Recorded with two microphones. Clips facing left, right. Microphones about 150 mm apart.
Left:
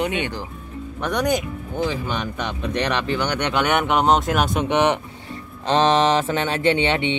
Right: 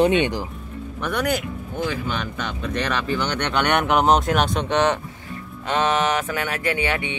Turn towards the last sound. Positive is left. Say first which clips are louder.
# left 5 dB
turn(degrees=25)  # may be behind; listen again after turning